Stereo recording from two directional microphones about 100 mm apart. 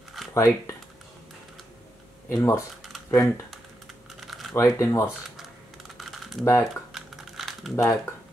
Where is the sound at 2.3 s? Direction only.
35° left (ahead or behind).